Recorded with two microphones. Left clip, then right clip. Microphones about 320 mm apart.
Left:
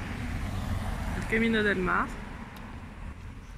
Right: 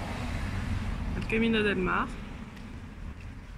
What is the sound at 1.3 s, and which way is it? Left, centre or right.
Speech, centre.